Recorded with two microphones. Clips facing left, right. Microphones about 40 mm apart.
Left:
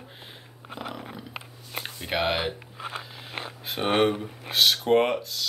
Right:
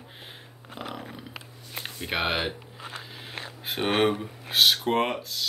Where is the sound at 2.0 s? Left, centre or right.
Centre.